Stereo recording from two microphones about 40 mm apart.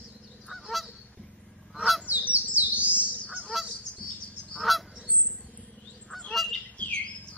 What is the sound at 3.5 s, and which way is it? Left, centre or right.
Goose, centre.